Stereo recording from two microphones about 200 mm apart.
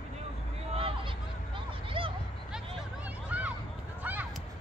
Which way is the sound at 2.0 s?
25° right (ahead or behind).